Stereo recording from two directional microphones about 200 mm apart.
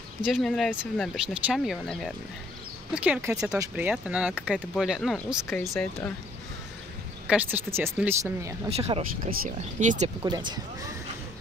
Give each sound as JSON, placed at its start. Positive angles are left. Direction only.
{"t": 0.2, "sound": "speech", "side_deg": 0}
{"t": 7.2, "sound": "speech", "side_deg": -10}
{"t": 8.6, "sound": "speech", "side_deg": -30}
{"t": 9.3, "sound": "speech", "side_deg": -45}
{"t": 10.2, "sound": "speech", "side_deg": -20}